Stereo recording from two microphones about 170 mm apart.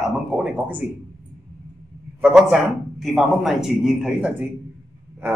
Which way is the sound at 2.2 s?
5° right (ahead or behind).